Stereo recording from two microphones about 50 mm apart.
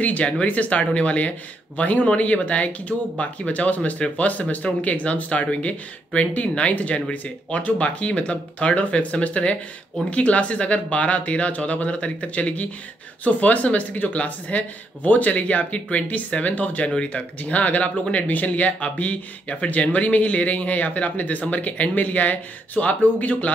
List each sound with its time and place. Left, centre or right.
0.0 s speech: left